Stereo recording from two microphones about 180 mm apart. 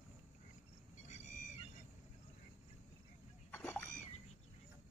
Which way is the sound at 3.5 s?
10° left (ahead or behind).